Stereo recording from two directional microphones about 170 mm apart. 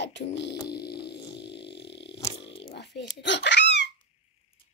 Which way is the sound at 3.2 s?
90° left.